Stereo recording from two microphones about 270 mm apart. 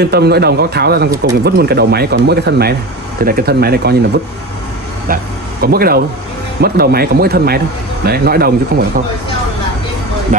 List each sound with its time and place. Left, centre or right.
0.0 s speech: right
5.0 s speech: right